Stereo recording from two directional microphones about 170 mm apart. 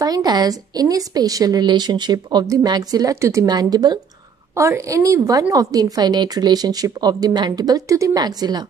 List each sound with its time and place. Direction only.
0.0 s a woman's voice: 20° right (ahead or behind)